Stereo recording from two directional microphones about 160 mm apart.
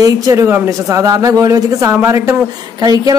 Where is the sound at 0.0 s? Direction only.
20° right (ahead or behind).